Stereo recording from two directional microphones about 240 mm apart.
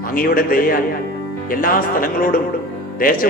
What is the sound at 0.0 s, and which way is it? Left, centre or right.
Speech, left.